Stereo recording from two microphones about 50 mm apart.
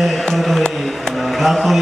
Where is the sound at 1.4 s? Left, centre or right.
Centre.